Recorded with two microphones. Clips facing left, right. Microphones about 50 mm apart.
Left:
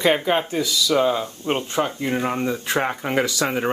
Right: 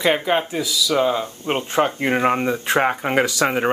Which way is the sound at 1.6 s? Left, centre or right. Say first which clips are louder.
Right 4 dB; right.